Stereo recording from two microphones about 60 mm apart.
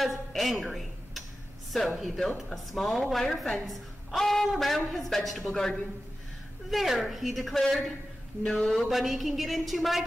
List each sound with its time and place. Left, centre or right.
0.0 s a woman's voice: centre
8.5 s a sound: centre
8.8 s a woman's voice: centre